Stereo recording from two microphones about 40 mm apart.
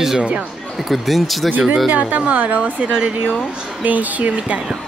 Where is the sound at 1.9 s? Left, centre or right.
Right.